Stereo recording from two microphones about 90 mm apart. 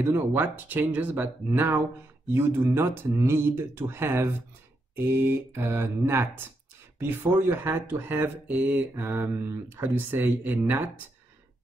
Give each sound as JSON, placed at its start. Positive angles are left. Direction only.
{"t": 0.0, "sound": "speech", "side_deg": -25}